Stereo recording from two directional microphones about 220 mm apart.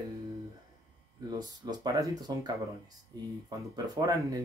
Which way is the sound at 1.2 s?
20° right (ahead or behind).